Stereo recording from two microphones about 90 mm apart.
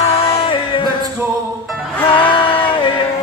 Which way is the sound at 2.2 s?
70° left (ahead or behind).